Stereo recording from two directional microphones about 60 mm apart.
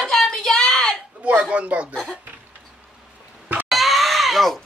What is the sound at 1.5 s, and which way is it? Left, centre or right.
Chuckle, centre.